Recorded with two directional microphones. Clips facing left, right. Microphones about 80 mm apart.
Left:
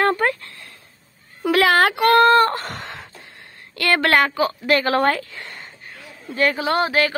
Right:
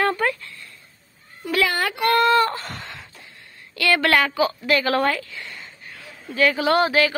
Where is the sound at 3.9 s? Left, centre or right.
Left.